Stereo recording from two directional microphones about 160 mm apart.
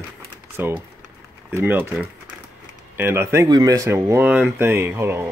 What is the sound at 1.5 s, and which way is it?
Speech, 15° right (ahead or behind).